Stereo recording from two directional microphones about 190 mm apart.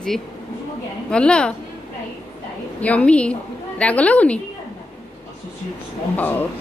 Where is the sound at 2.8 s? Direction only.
5° left (ahead or behind).